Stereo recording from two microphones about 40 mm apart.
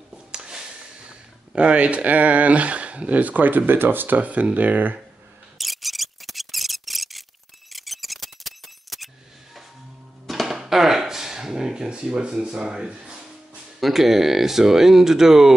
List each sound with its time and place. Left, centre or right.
0.3 s speech: centre; by 4.2 s right
4.2 s speech: right
5.6 s a sound: centre
10.2 s music: centre; by 13.2 s right
13.7 s speech: centre